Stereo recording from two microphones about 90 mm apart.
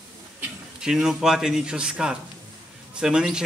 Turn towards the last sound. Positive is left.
turn(degrees=-10)  # may be behind; listen again after turning